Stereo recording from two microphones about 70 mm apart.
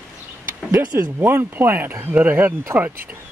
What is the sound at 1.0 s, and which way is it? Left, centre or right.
Speech, right.